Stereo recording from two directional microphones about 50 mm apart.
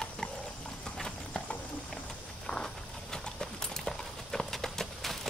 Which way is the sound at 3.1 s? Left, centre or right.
Centre.